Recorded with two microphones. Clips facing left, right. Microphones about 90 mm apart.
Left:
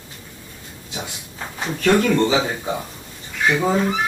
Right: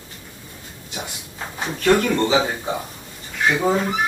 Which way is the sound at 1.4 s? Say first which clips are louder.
Left 1 dB; 10° right (ahead or behind).